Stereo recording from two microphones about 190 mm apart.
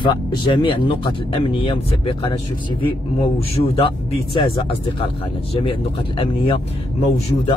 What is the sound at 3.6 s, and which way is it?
Speech, 30° left (ahead or behind).